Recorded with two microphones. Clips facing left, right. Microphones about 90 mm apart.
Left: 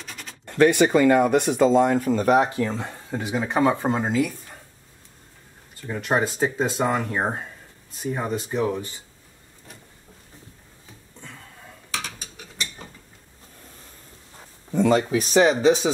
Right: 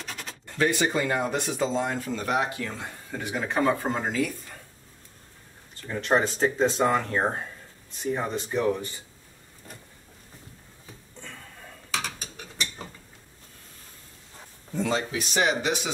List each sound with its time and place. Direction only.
0.0 s a sound: centre (ahead or behind)
0.5 s speech: 60° left (ahead or behind); by 3.2 s 30° left (ahead or behind)
3.2 s speech: 15° left (ahead or behind)
5.8 s speech: 10° left (ahead or behind)
14.8 s speech: 55° left (ahead or behind)
15.0 s speech: 35° left (ahead or behind)